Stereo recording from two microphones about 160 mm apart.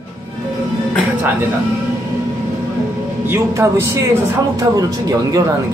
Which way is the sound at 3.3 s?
15° right (ahead or behind).